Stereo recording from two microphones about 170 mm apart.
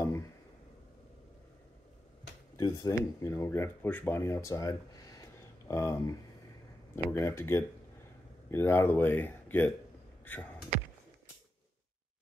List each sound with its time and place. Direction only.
2.5 s speech: 20° left (ahead or behind)